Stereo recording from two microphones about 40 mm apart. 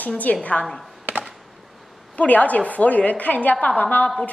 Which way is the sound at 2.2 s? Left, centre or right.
Left.